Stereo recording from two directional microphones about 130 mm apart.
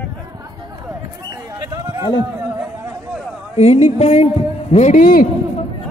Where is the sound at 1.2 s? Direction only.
30° right (ahead or behind).